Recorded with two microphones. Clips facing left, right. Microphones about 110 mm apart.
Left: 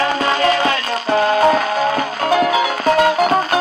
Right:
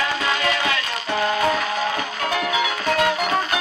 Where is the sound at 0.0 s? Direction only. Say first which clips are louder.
Left 7 dB; 40° left (ahead or behind).